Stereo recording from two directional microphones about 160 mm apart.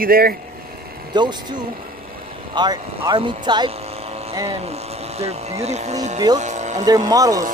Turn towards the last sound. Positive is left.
turn(degrees=-20)  # may be behind; listen again after turning